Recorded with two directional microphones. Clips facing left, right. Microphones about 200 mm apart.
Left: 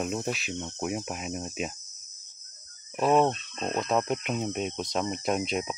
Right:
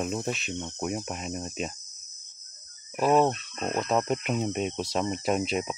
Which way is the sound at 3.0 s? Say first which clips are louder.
Right 1 dB; centre (ahead or behind).